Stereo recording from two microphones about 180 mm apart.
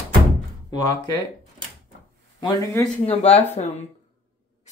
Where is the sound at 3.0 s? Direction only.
35° left (ahead or behind).